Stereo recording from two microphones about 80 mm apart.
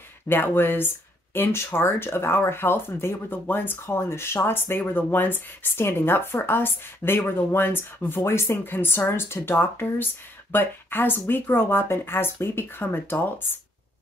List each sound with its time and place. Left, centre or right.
0.3 s speech: left